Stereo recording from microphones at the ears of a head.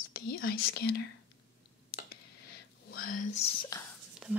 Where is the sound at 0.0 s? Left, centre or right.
Left.